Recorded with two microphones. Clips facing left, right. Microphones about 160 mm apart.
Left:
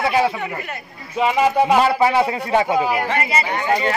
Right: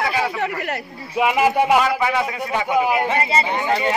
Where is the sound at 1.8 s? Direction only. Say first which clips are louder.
Left 3 dB; 35° left (ahead or behind).